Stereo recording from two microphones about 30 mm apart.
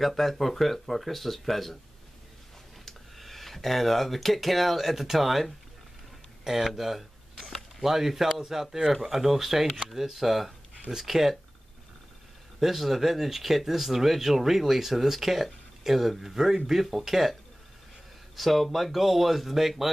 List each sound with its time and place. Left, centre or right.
0.0 s speech: centre
3.2 s speech: centre
6.7 s a sound: centre
7.8 s speech: centre
12.5 s speech: centre
16.8 s speech: centre
18.3 s speech: centre